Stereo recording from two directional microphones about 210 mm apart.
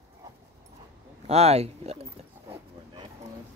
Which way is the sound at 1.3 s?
30° right (ahead or behind).